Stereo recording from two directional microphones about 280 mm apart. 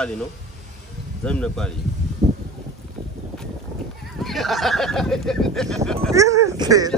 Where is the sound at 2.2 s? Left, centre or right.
Right.